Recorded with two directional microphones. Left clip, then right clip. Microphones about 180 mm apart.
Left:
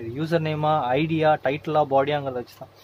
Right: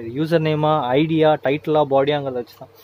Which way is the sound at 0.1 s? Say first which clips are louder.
Right 6 dB; 40° right (ahead or behind).